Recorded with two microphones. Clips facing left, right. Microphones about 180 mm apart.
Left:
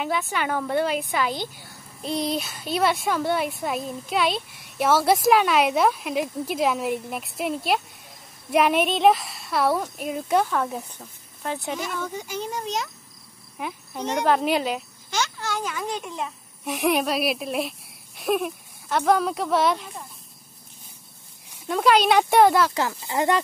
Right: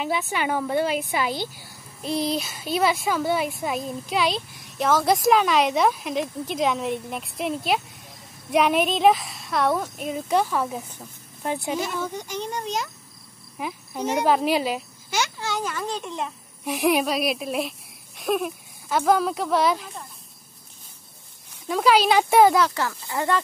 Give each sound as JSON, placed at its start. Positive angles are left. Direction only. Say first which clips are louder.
{"t": 0.3, "sound": "a woman's voice", "louder": "right 1 dB", "side_deg": -10}
{"t": 12.1, "sound": "speech", "louder": "even", "side_deg": 5}
{"t": 15.5, "sound": "a child's voice", "louder": "right 1 dB", "side_deg": 5}
{"t": 21.6, "sound": "speech", "louder": "even", "side_deg": 0}
{"t": 22.8, "sound": "speech", "louder": "left 2 dB", "side_deg": 15}